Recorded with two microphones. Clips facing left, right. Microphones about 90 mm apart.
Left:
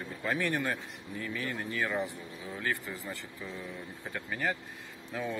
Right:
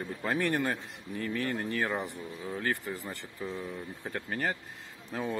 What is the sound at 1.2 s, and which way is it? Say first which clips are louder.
Speech: right 4 dB; 55° right (ahead or behind).